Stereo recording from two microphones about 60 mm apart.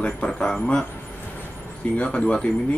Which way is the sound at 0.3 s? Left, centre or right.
Centre.